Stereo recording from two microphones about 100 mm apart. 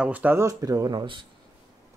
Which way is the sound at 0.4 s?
35° right (ahead or behind).